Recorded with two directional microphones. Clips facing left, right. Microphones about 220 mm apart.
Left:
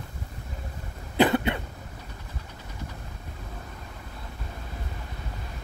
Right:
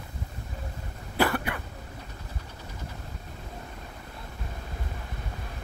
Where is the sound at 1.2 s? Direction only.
20° left (ahead or behind).